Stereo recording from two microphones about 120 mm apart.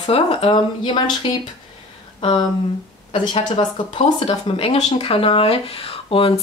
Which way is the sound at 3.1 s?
45° left (ahead or behind).